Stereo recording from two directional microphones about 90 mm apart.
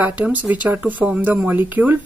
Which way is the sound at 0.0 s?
20° right (ahead or behind).